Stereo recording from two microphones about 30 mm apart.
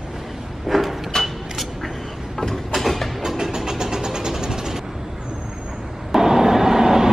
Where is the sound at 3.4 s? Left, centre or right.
Centre.